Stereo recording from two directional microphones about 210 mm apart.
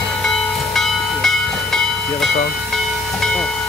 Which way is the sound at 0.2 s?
Centre (ahead or behind).